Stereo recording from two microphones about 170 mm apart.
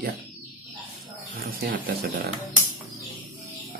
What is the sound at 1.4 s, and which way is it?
Speech, 60° right (ahead or behind).